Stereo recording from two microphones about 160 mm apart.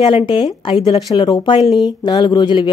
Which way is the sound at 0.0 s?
30° left (ahead or behind).